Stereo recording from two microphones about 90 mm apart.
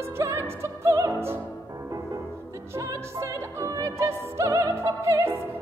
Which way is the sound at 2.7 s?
35° right (ahead or behind).